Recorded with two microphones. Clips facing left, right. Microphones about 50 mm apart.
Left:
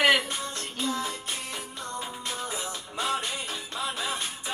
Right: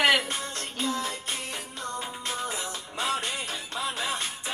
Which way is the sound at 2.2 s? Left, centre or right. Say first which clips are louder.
Right 3 dB; right.